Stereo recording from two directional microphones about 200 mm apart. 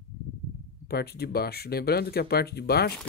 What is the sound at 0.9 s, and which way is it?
Speech, 50° left (ahead or behind).